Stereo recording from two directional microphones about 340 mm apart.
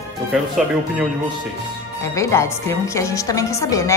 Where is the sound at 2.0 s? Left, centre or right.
Centre.